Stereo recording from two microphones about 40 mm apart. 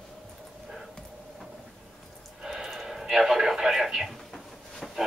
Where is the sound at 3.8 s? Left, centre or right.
Centre.